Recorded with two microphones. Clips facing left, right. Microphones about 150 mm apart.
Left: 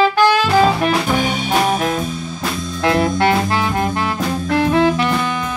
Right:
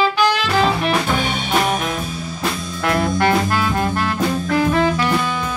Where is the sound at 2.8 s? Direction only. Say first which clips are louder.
Left 2 dB; 25° left (ahead or behind).